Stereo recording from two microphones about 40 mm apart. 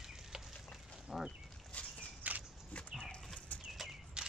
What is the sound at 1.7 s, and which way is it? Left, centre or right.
Walk, left.